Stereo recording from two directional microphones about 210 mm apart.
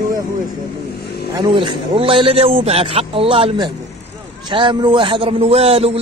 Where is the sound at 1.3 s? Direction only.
20° right (ahead or behind).